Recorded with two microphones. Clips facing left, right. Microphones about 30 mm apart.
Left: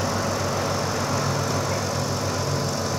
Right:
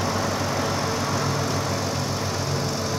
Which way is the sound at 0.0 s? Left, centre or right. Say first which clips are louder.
Even; centre.